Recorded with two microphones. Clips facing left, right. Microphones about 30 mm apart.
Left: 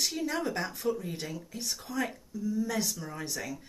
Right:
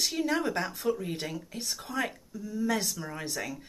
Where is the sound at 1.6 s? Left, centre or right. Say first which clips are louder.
Right 1 dB; centre.